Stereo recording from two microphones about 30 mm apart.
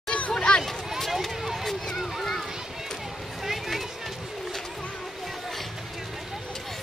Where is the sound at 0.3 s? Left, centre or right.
Left.